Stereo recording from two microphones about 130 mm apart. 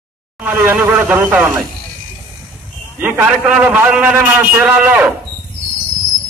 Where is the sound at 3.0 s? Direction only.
10° right (ahead or behind).